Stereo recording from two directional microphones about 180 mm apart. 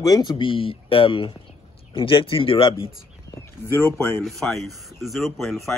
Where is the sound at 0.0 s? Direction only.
20° left (ahead or behind).